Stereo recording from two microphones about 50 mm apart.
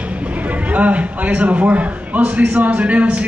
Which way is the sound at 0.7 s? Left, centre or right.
Right.